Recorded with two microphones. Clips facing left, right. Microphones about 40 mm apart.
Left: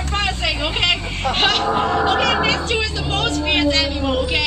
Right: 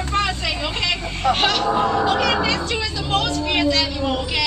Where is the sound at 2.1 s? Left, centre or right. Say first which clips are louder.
Left 2 dB; left.